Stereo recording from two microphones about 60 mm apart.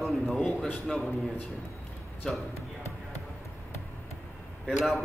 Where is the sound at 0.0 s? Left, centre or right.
Centre.